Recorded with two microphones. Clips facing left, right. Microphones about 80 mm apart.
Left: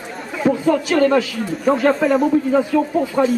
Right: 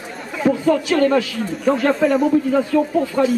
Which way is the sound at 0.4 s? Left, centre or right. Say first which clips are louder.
Even; centre.